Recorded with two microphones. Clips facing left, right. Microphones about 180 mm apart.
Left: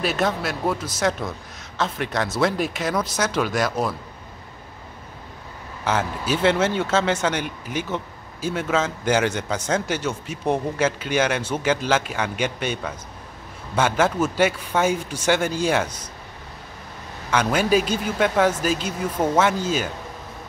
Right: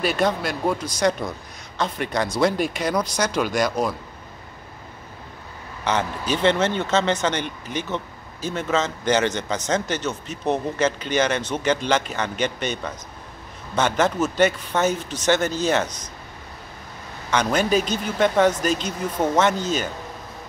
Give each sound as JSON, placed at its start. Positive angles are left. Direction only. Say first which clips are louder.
{"t": 0.0, "sound": "speech", "louder": "right 1 dB", "side_deg": 0}
{"t": 5.9, "sound": "speech", "louder": "even", "side_deg": 5}
{"t": 17.3, "sound": "speech", "louder": "left 1 dB", "side_deg": 5}